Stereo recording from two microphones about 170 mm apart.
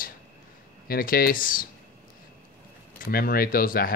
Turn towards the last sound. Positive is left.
turn(degrees=55)  # may be behind; listen again after turning